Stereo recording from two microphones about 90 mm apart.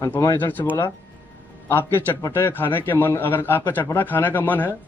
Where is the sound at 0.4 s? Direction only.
20° left (ahead or behind).